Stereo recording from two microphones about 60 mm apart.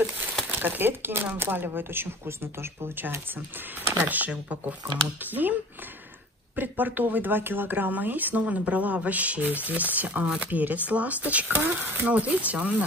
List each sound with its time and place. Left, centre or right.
0.5 s speech: right
6.5 s speech: right
12.1 s speech: right